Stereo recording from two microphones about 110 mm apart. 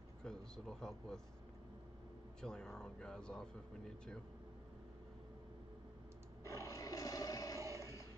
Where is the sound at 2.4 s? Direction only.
5° left (ahead or behind).